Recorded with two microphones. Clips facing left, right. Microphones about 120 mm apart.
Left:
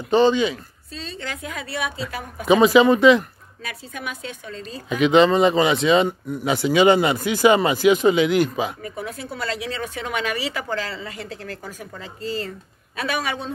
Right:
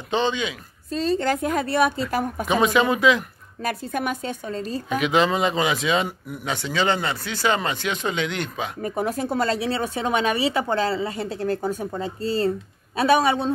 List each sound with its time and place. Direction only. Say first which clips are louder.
0.1 s speech: left 7 dB; 5° left (ahead or behind)
0.9 s a woman's voice: right 11 dB; 45° right (ahead or behind)
2.4 s speech: left 7 dB; centre (ahead or behind)
3.6 s speech: right 7 dB; 50° right (ahead or behind)
4.8 s speech: left 6 dB; centre (ahead or behind)
6.5 s speech: left 7 dB; 10° left (ahead or behind)
8.8 s speech: right 7 dB; 45° right (ahead or behind)